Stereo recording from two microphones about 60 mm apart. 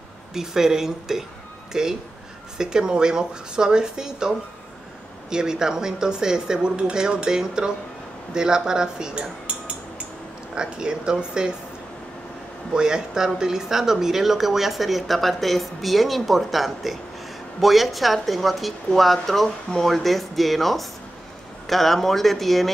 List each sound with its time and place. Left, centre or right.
0.3 s speech: centre
12.7 s speech: centre